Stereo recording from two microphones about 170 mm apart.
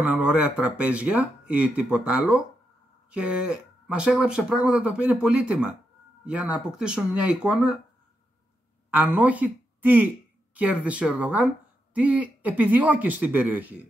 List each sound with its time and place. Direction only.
0.0 s speech: 5° right (ahead or behind)
8.9 s speech: 10° right (ahead or behind)